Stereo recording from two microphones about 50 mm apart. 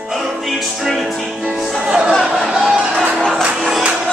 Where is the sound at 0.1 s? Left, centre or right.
Centre.